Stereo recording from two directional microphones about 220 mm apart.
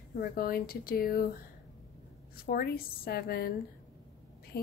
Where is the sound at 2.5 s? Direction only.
45° left (ahead or behind).